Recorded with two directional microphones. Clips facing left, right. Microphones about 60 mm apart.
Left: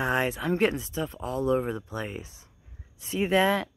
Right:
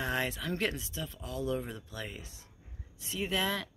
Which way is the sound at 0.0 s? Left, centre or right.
Left.